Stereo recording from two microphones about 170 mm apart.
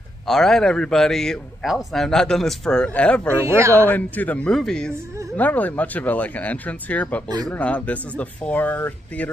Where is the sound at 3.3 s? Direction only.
15° right (ahead or behind).